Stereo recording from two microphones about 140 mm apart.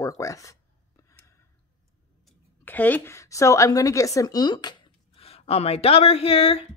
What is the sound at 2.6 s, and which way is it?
A woman's voice, 15° left (ahead or behind).